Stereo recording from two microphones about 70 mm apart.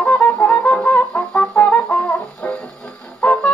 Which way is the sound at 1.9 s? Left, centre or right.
Centre.